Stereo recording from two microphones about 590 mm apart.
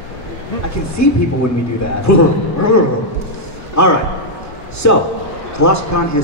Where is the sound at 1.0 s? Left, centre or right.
Left.